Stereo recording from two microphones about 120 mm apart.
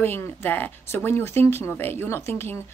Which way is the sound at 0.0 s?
20° left (ahead or behind).